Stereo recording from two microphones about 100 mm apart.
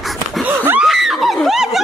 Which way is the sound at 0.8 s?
Centre (ahead or behind).